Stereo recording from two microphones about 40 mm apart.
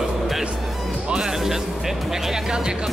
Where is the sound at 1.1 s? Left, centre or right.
Centre.